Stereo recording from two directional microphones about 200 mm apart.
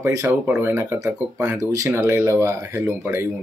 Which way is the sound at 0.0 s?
15° right (ahead or behind).